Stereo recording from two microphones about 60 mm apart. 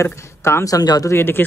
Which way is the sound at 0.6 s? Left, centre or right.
Left.